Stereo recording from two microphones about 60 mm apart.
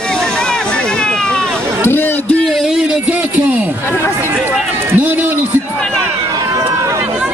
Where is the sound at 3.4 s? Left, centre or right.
Right.